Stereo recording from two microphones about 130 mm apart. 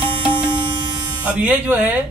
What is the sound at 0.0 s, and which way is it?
Music, 40° right (ahead or behind).